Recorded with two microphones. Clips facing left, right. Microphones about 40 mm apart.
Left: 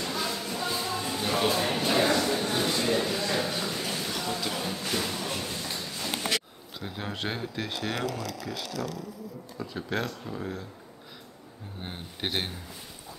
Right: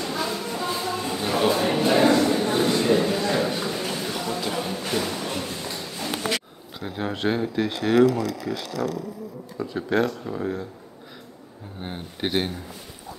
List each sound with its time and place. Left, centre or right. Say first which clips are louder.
0.0 s a sound: right 4 dB; centre
6.8 s speech: right 7 dB; centre
11.8 s speech: right 6 dB; centre